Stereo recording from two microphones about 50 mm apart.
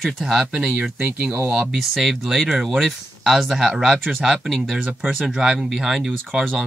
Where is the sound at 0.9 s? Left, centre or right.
Right.